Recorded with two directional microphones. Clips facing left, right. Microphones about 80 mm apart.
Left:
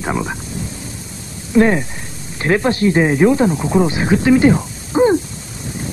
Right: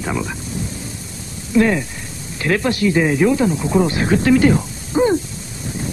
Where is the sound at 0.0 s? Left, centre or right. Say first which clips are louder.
Left 2 dB; left.